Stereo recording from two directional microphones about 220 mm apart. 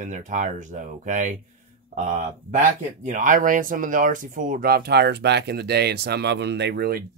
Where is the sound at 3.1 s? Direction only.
35° right (ahead or behind).